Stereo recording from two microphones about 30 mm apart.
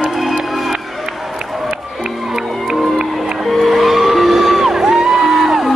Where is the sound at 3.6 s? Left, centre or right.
Centre.